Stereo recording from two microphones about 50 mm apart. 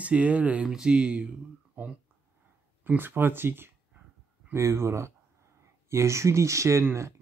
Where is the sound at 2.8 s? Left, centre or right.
Right.